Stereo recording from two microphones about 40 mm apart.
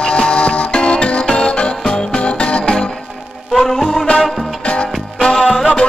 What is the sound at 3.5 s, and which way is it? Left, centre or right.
Music, centre.